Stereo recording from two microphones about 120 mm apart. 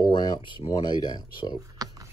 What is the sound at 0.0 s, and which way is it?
Speech, 35° left (ahead or behind).